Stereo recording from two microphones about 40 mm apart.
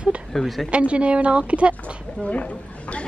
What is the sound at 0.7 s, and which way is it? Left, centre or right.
A woman's voice, right.